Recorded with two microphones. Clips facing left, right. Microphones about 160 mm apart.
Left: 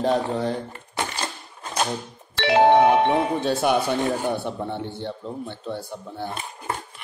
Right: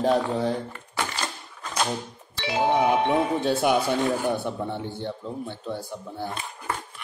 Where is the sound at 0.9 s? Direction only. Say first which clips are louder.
Left 1 dB; 30° left (ahead or behind).